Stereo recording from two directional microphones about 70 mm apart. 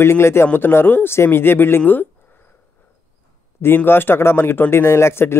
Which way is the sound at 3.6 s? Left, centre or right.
Left.